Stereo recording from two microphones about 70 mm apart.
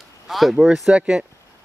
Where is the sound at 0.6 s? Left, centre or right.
Centre.